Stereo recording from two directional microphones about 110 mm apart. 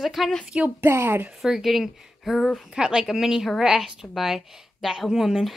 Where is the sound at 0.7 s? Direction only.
20° right (ahead or behind).